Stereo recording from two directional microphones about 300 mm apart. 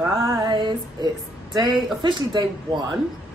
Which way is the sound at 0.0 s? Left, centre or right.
Centre.